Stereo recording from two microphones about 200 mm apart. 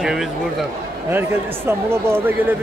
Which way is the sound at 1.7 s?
10° right (ahead or behind).